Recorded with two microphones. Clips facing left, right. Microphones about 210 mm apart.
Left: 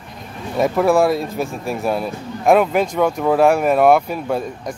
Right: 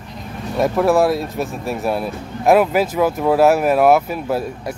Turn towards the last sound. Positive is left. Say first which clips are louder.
# right 1 dB
turn(degrees=-5)  # may be behind; listen again after turning